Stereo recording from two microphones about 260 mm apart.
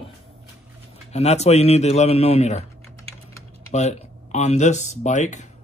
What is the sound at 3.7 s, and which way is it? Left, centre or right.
Speech, left.